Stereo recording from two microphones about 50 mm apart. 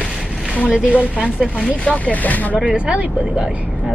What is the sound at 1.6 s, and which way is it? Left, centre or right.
Speech, left.